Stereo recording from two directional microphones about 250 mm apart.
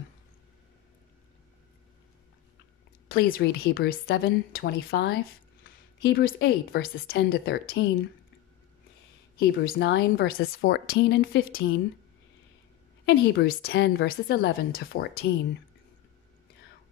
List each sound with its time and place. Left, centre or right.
3.1 s a woman's voice: left
9.4 s a woman's voice: left
13.0 s a woman's voice: left